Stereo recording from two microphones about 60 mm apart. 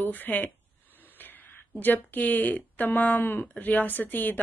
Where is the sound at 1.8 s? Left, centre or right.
Left.